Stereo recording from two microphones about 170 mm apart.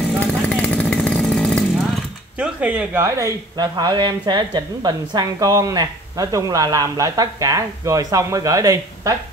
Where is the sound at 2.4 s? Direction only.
5° right (ahead or behind).